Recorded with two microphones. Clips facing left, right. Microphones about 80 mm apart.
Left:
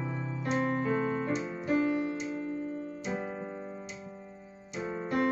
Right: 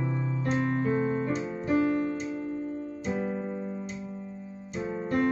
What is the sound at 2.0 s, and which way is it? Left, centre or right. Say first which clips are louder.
Music: right 3 dB; right.